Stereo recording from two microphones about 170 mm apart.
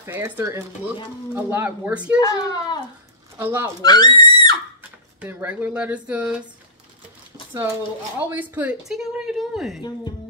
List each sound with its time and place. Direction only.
0.0 s speech: 15° right (ahead or behind)
2.1 s a child's voice: 20° left (ahead or behind)
3.3 s speech: 15° right (ahead or behind)
3.8 s a sound: 25° left (ahead or behind)
5.2 s speech: 10° right (ahead or behind)
8.2 s speech: 10° right (ahead or behind)